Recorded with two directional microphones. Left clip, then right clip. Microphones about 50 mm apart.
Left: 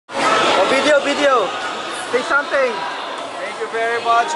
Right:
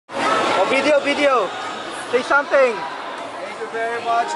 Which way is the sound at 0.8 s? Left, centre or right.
Centre.